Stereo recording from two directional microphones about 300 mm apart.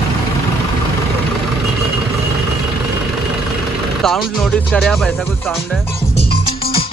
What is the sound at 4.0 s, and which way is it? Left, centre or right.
Speech, centre.